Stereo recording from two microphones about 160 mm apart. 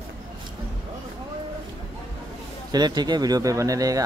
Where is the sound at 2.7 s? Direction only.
25° right (ahead or behind).